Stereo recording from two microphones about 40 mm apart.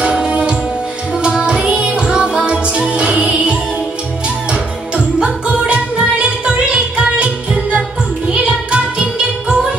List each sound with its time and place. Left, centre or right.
0.0 s music: right